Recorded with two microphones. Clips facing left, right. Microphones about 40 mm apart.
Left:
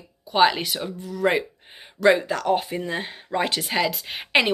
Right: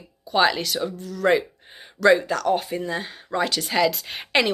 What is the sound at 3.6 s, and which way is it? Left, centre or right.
Speech, centre.